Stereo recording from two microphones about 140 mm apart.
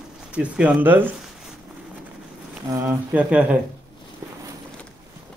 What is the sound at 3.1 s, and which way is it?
Speech, 10° right (ahead or behind).